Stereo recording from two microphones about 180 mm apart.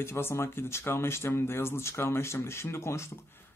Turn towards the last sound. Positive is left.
turn(degrees=15)  # may be behind; listen again after turning